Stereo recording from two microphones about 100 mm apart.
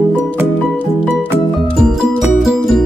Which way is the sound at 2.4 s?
Centre (ahead or behind).